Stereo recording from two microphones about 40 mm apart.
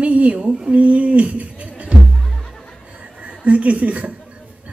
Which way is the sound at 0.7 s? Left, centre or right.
Right.